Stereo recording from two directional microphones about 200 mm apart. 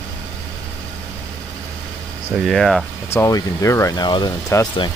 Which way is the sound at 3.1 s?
15° left (ahead or behind).